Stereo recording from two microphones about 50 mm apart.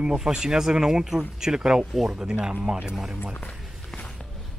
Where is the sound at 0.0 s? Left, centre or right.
Centre.